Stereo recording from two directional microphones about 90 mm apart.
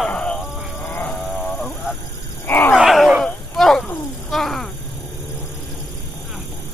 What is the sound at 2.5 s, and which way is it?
Wild animals, 20° left (ahead or behind).